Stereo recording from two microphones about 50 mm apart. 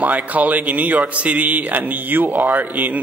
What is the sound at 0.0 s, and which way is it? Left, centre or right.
A man's voice, right.